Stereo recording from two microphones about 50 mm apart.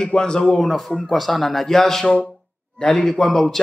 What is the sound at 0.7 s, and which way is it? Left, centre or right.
Speech, centre.